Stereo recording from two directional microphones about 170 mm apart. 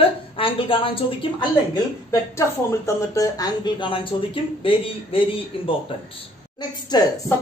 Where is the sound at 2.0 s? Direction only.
15° left (ahead or behind); by 5.8 s 30° left (ahead or behind).